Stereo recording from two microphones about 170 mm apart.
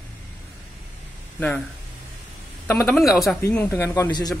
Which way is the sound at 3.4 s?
15° left (ahead or behind).